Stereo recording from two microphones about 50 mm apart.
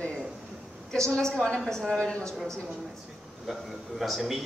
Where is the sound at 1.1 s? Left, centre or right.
Centre.